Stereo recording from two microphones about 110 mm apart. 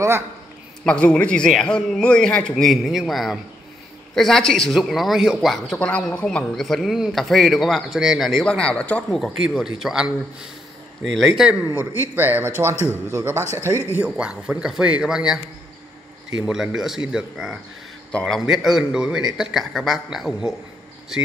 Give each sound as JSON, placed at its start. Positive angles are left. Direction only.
{"t": 0.8, "sound": "a man's voice", "side_deg": 10}
{"t": 5.8, "sound": "a man's voice", "side_deg": 10}
{"t": 9.1, "sound": "speech", "side_deg": 0}
{"t": 11.1, "sound": "speech", "side_deg": 0}
{"t": 11.8, "sound": "speech", "side_deg": -20}
{"t": 13.9, "sound": "speech", "side_deg": -10}